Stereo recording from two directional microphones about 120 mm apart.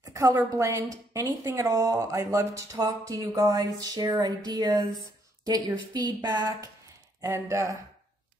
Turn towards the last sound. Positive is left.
turn(degrees=-25)  # may be behind; listen again after turning